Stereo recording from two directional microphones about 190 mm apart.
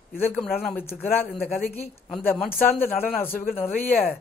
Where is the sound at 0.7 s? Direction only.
10° left (ahead or behind).